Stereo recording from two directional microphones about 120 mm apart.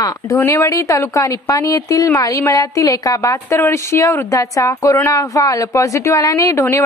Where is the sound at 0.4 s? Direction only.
25° left (ahead or behind).